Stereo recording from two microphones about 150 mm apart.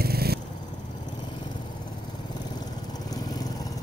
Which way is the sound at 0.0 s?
90° right.